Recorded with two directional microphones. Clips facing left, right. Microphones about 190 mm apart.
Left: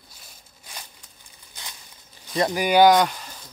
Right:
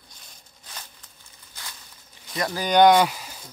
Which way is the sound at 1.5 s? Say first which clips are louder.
Left 1 dB; 20° left (ahead or behind).